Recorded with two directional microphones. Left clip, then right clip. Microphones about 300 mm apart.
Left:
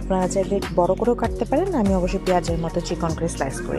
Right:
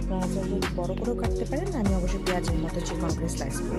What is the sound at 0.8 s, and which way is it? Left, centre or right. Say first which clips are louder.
Music: left 13 dB; left.